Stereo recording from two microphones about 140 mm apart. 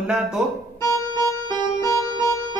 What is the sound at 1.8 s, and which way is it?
Music, 20° left (ahead or behind).